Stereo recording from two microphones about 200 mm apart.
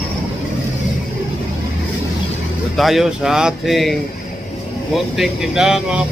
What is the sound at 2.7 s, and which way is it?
Speech, centre (ahead or behind).